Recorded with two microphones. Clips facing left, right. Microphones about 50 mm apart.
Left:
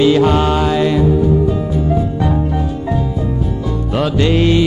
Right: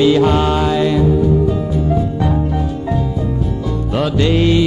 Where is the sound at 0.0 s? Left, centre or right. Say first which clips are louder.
Left 1 dB; left.